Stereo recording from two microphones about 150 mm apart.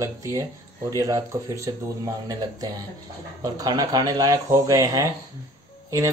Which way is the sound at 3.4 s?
25° right (ahead or behind).